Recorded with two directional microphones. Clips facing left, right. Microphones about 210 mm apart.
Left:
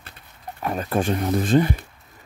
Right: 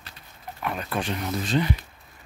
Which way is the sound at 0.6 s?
40° left (ahead or behind).